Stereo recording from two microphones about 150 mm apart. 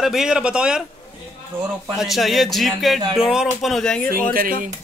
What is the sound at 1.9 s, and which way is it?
Speech, centre (ahead or behind).